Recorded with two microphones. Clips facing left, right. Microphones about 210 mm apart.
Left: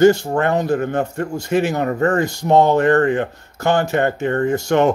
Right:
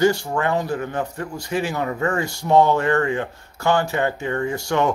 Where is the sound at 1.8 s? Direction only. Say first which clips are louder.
Left 5 dB; 45° left (ahead or behind).